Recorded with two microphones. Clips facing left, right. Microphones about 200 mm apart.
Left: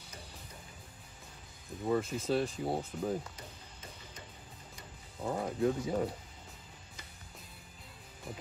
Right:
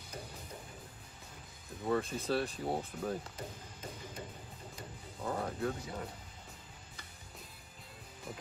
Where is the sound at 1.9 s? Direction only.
5° left (ahead or behind).